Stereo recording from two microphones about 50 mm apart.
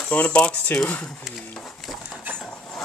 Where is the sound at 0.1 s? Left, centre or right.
Left.